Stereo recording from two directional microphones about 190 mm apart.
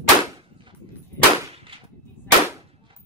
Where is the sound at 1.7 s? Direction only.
30° right (ahead or behind).